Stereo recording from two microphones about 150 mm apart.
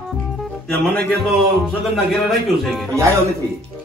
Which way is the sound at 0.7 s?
5° left (ahead or behind).